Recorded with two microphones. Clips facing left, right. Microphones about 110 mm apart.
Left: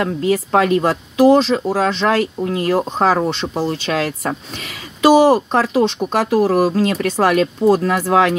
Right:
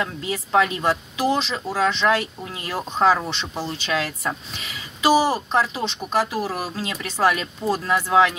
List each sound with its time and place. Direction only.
0.0 s speech: 45° left (ahead or behind)